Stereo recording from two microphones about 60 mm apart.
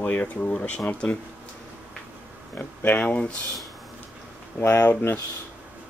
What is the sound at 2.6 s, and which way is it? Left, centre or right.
Speech, left.